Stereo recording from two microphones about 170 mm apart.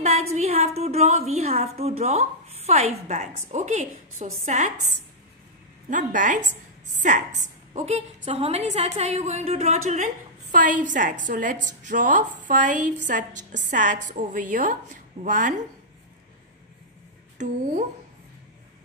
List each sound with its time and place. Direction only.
0.0 s a woman's voice: 40° right (ahead or behind)
17.4 s a woman's voice: 45° right (ahead or behind)